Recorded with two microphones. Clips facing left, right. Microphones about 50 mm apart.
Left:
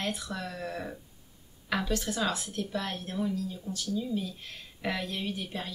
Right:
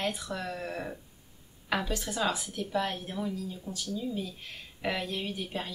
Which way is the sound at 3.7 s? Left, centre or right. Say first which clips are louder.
Left 2 dB; right.